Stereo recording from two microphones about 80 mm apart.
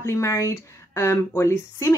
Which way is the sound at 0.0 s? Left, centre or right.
Left.